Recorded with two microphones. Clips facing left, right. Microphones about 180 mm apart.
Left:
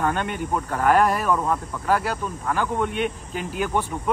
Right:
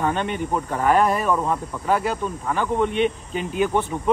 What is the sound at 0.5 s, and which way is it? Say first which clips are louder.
Speech: even; 5° right (ahead or behind).